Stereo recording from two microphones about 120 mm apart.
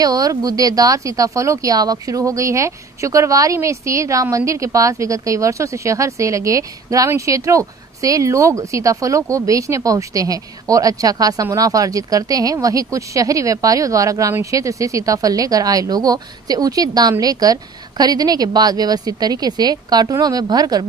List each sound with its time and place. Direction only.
0.0 s speech: 30° right (ahead or behind)